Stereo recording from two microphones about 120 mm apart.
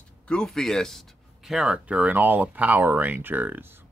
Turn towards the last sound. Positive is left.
turn(degrees=-15)  # may be behind; listen again after turning